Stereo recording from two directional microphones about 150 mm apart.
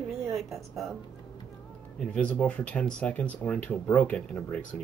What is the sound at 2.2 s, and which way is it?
Speech, 10° left (ahead or behind).